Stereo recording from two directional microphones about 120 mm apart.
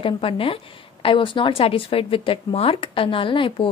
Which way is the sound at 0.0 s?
50° left (ahead or behind).